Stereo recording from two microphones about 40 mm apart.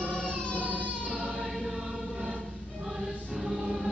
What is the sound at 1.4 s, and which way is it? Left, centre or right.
Music, centre.